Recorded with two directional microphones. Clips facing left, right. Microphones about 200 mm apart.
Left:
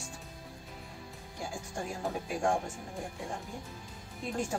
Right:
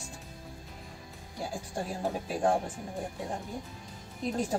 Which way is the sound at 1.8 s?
35° right (ahead or behind).